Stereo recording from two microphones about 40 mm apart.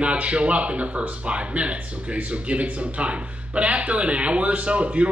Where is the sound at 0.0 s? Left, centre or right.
Right.